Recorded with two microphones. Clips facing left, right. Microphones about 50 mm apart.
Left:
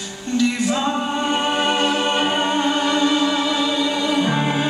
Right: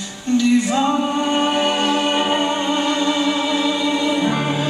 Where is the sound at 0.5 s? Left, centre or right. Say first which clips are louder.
Right 4 dB; right.